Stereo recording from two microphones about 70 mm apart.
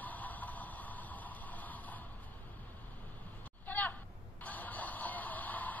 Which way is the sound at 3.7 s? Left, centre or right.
Left.